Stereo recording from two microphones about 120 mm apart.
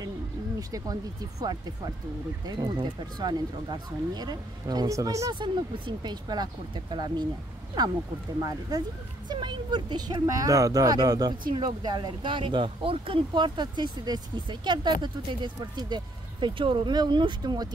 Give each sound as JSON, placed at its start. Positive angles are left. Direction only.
{"t": 0.6, "sound": "speech", "side_deg": -30}
{"t": 2.4, "sound": "speech", "side_deg": -35}
{"t": 5.3, "sound": "speech", "side_deg": -40}